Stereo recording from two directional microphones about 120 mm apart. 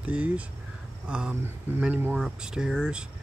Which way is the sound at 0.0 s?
10° right (ahead or behind).